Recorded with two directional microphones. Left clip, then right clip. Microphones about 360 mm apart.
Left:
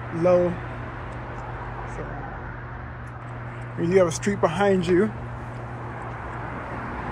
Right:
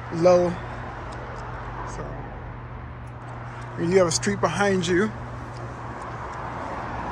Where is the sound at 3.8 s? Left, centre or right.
Centre.